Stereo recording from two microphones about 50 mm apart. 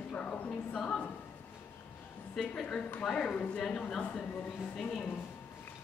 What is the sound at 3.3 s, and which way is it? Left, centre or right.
Speech, left.